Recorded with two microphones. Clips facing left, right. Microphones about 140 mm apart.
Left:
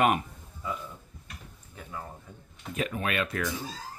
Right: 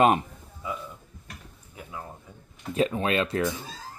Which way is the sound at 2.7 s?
30° right (ahead or behind).